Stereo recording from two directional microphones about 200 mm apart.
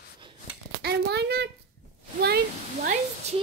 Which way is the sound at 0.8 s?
55° right (ahead or behind).